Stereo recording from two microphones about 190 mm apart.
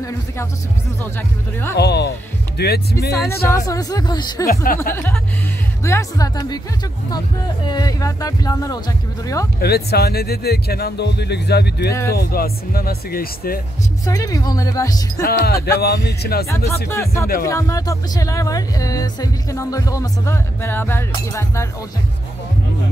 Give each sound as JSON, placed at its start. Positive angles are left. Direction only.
{"t": 1.8, "sound": "speech", "side_deg": 60}
{"t": 3.1, "sound": "speech", "side_deg": 15}
{"t": 4.9, "sound": "speech", "side_deg": 10}
{"t": 7.6, "sound": "speech", "side_deg": 20}
{"t": 9.6, "sound": "speech", "side_deg": 55}
{"t": 14.0, "sound": "speech", "side_deg": 20}
{"t": 15.2, "sound": "speech", "side_deg": 55}
{"t": 16.4, "sound": "speech", "side_deg": 15}